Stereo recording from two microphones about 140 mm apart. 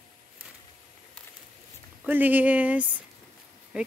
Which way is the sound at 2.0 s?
10° right (ahead or behind).